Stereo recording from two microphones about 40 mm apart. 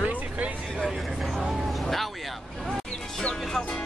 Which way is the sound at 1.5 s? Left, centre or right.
Centre.